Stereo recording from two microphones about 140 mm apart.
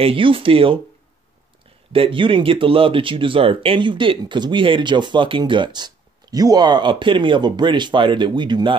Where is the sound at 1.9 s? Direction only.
40° right (ahead or behind).